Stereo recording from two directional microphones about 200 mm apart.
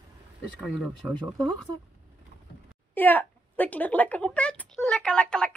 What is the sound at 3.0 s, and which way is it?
Speech, 10° left (ahead or behind).